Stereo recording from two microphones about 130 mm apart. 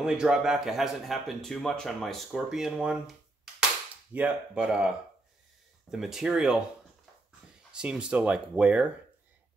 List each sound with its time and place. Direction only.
0.0 s speech: 5° right (ahead or behind)
7.7 s speech: 5° right (ahead or behind)